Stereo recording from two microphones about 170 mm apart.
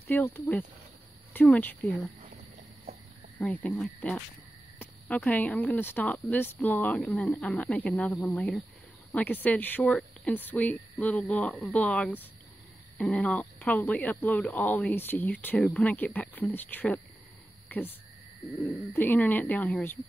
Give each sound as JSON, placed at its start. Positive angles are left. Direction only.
{"t": 0.1, "sound": "speech", "side_deg": 10}
{"t": 2.9, "sound": "a sound", "side_deg": -35}
{"t": 3.3, "sound": "speech", "side_deg": 10}